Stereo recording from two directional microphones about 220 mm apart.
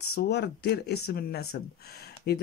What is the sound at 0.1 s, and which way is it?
A man's voice, 50° left (ahead or behind).